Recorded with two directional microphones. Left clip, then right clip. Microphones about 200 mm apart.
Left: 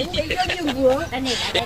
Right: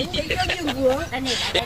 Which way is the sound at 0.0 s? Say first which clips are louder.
Left 1 dB; centre (ahead or behind).